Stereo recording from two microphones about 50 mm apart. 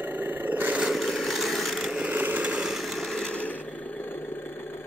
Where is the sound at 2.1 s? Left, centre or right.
Right.